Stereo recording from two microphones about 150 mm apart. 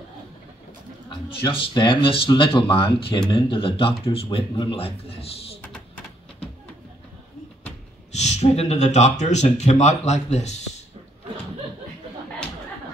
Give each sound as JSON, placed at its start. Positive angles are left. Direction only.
{"t": 1.3, "sound": "speech", "side_deg": 35}
{"t": 5.6, "sound": "a sound", "side_deg": 10}
{"t": 8.1, "sound": "speech", "side_deg": 50}